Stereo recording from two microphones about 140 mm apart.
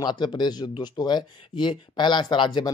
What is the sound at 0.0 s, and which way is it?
Speech, 30° left (ahead or behind).